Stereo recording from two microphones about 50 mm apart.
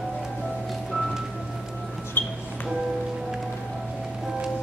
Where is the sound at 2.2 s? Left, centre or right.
Left.